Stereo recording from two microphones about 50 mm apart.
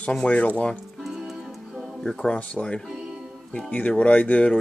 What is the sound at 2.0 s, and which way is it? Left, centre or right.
Speech, centre.